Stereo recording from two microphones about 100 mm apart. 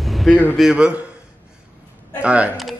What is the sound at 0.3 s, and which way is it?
Speech, 20° left (ahead or behind).